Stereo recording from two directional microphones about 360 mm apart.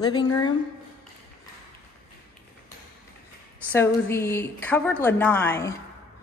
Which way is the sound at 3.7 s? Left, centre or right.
Centre.